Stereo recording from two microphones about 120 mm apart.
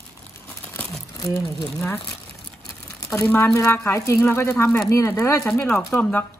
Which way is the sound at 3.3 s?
25° left (ahead or behind).